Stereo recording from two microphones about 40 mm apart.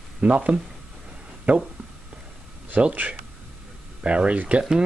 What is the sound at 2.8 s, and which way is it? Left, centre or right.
Speech, right.